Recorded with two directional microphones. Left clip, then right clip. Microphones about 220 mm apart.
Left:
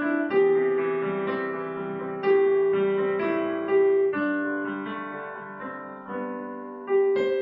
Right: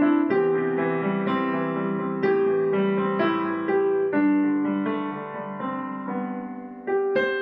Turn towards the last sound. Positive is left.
turn(degrees=-40)  # may be behind; listen again after turning